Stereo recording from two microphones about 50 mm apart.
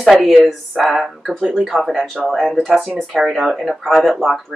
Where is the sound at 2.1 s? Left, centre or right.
Centre.